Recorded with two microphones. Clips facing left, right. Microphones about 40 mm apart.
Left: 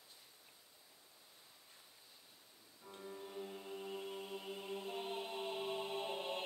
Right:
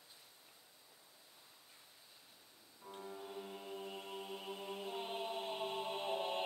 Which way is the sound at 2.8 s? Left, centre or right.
Centre.